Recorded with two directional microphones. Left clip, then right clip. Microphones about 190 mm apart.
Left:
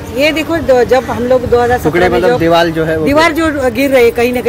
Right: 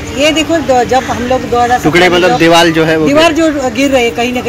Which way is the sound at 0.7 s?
30° left (ahead or behind).